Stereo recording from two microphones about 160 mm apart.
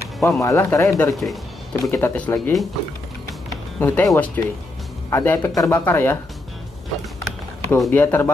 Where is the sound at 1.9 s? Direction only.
15° left (ahead or behind).